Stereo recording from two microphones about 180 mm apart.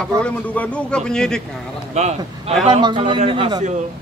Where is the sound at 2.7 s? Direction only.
25° right (ahead or behind).